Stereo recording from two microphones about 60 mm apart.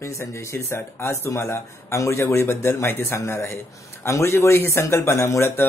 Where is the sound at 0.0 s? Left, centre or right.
Left.